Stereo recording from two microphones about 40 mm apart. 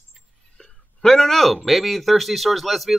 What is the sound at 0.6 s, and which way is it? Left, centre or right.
Speech, centre.